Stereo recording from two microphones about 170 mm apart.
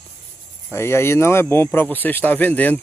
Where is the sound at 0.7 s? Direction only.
15° left (ahead or behind).